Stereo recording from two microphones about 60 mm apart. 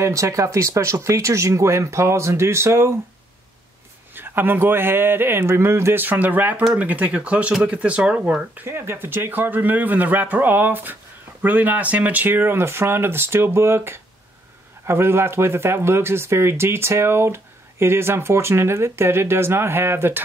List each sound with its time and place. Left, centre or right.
0.0 s speech: right
4.1 s speech: right
6.0 s speech: right
8.6 s speech: right